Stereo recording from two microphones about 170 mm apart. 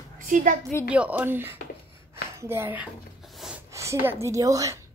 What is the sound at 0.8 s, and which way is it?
Speech, 10° right (ahead or behind).